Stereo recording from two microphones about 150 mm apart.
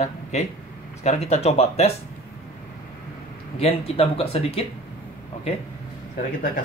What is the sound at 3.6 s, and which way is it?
Speech, 40° left (ahead or behind).